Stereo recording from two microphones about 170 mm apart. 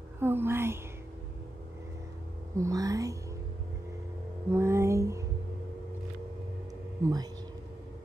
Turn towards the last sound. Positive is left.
turn(degrees=-25)  # may be behind; listen again after turning